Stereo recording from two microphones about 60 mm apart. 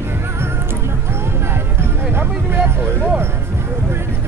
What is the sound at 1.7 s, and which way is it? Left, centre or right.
Music, right.